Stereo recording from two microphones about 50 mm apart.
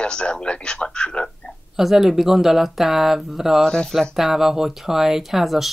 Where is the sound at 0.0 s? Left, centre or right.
Centre.